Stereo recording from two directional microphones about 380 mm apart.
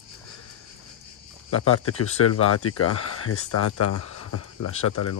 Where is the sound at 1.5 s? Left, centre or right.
Left.